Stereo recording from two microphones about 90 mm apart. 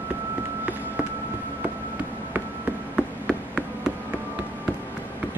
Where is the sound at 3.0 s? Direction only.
10° right (ahead or behind).